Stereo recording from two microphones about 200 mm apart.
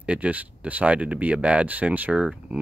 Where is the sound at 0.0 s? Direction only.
5° right (ahead or behind).